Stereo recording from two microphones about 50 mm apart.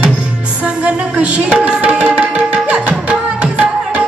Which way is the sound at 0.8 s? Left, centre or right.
Right.